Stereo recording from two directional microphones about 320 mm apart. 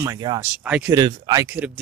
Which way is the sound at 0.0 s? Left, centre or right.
Centre.